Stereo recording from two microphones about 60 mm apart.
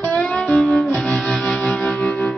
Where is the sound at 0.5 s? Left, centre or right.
Centre.